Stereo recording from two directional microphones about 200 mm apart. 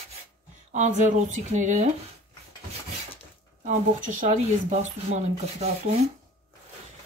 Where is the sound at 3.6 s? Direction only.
40° right (ahead or behind).